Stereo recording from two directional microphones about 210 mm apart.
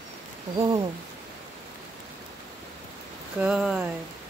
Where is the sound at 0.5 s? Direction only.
20° right (ahead or behind).